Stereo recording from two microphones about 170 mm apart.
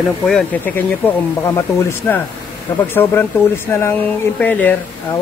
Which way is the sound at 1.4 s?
15° left (ahead or behind).